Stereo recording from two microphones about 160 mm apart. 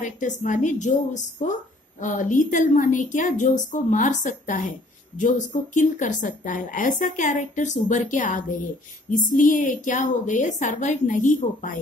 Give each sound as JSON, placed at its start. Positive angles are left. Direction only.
{"t": 0.0, "sound": "a woman's voice", "side_deg": 50}